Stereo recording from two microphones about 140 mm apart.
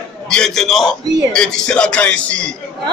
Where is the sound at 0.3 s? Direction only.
5° left (ahead or behind).